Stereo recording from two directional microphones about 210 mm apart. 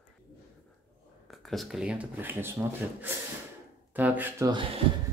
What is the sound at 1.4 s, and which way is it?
Speech, centre (ahead or behind).